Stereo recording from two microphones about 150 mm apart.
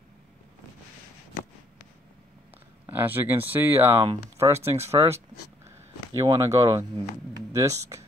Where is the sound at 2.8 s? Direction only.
15° right (ahead or behind).